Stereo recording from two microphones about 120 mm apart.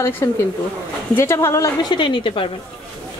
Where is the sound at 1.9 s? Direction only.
45° left (ahead or behind).